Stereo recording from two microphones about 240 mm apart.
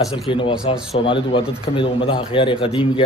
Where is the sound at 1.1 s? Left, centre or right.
Left.